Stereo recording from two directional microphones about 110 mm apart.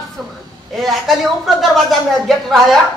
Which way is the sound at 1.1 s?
Centre (ahead or behind).